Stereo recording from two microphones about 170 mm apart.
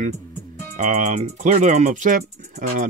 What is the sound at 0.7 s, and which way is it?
Speech, 45° right (ahead or behind).